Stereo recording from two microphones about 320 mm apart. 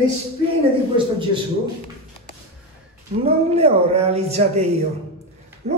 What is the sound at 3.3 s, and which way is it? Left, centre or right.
A woman's voice, centre.